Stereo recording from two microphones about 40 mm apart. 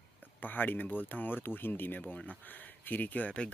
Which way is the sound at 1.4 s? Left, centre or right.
Left.